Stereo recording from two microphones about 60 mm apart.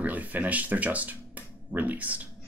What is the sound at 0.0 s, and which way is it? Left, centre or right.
Speech, right.